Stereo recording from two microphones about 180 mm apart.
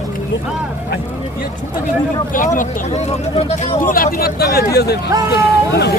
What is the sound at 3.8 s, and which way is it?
Speech, 50° left (ahead or behind).